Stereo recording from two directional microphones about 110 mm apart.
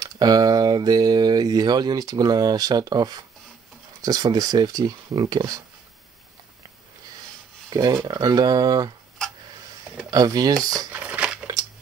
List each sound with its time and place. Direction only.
0.0 s speech: 35° right (ahead or behind)
7.7 s speech: 35° right (ahead or behind)
10.1 s speech: 35° right (ahead or behind)
10.9 s crumpling: 15° right (ahead or behind)